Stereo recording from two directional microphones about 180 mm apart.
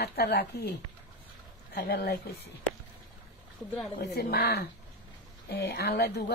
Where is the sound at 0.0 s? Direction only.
65° left (ahead or behind).